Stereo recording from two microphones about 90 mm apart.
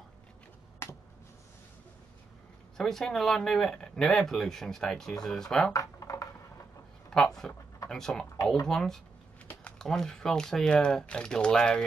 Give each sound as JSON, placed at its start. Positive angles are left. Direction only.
{"t": 2.8, "sound": "speech", "side_deg": 5}
{"t": 5.7, "sound": "computer keyboard", "side_deg": 40}
{"t": 7.1, "sound": "speech", "side_deg": 5}